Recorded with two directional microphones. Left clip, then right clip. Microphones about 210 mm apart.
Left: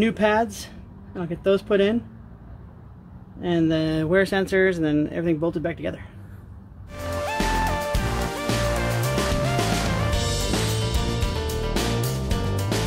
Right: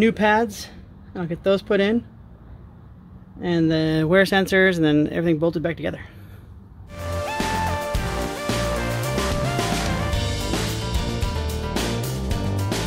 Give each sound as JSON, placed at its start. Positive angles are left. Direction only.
{"t": 0.0, "sound": "speech", "side_deg": -35}
{"t": 3.3, "sound": "speech", "side_deg": -35}
{"t": 6.9, "sound": "music", "side_deg": 0}